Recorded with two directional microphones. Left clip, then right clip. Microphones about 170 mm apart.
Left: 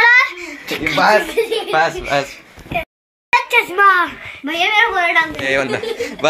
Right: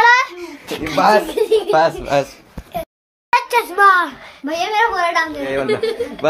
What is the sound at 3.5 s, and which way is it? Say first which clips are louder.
Speech: even; 5° right (ahead or behind).